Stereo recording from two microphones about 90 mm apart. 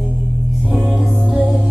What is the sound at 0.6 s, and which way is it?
Music, 15° right (ahead or behind).